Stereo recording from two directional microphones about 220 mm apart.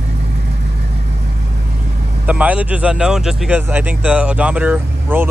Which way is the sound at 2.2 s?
5° right (ahead or behind).